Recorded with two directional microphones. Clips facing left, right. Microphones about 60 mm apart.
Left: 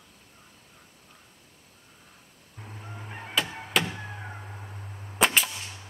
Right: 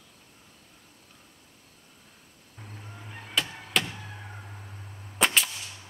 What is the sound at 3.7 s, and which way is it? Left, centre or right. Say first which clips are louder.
Vehicle: left 2 dB; centre.